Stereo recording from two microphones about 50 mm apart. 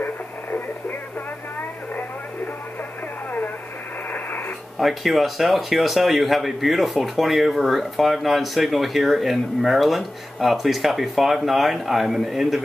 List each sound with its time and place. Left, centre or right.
0.0 s radio: left
4.7 s speech: centre